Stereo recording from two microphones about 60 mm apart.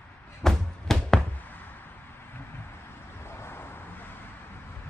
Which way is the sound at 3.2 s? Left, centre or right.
Left.